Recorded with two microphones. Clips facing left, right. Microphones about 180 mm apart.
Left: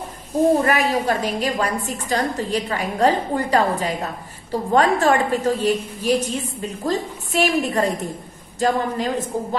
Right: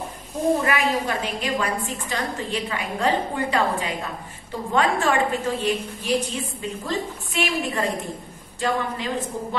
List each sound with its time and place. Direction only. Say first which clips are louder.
0.7 s a woman's voice: left 4 dB; 40° left (ahead or behind)